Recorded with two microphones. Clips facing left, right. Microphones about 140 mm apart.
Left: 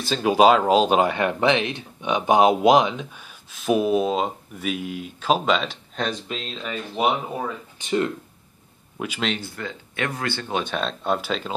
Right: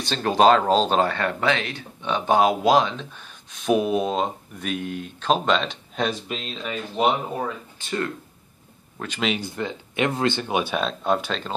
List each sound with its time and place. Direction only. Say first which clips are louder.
0.0 s speech: left 1 dB; 5° left (ahead or behind)
7.8 s speech: left 5 dB; 20° left (ahead or behind)
9.4 s speech: right 4 dB; 20° right (ahead or behind)
10.6 s speech: right 2 dB; 5° right (ahead or behind)